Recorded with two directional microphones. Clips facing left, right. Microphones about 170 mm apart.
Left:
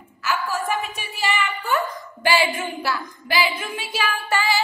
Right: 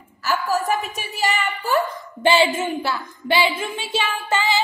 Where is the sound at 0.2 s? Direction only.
40° right (ahead or behind).